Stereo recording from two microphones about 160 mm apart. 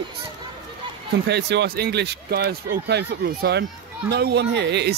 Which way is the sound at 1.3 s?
90° right.